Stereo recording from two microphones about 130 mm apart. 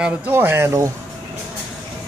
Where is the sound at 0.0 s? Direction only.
15° right (ahead or behind).